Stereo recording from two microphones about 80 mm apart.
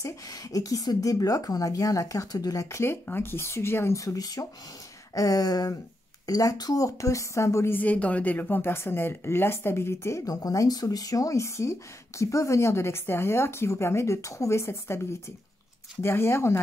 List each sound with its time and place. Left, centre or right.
0.0 s speech: left
2.8 s speech: left
7.7 s speech: centre
16.0 s speech: left